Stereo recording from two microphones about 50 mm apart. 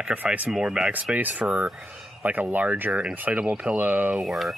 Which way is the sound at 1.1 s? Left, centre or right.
Right.